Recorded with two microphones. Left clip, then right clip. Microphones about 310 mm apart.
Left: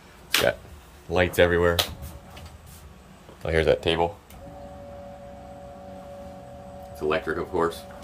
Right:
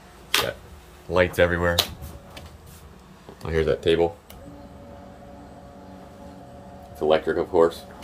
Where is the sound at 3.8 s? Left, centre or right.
Left.